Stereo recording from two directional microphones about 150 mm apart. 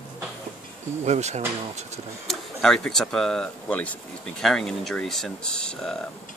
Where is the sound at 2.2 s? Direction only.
5° left (ahead or behind).